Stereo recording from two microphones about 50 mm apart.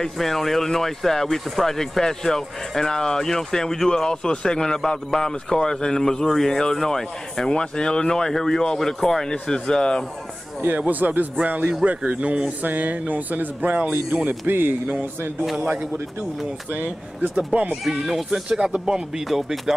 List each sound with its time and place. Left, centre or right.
0.0 s speech: centre
10.9 s speech: right
15.7 s speech: right
17.8 s speech: centre
19.2 s speech: centre